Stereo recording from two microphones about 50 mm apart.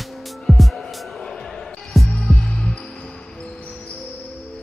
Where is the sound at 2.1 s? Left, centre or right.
Centre.